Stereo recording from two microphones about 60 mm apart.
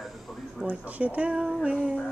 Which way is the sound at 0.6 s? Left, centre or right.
Right.